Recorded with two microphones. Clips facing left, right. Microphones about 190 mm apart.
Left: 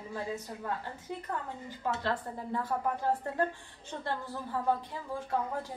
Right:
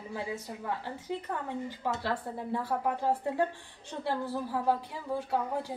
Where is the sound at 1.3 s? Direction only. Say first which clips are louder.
Right 3 dB; 10° right (ahead or behind).